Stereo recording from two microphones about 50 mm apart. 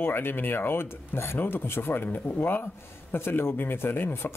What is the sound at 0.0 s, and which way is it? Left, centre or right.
Speech, left.